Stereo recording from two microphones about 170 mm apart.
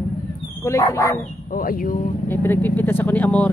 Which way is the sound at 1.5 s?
55° left (ahead or behind).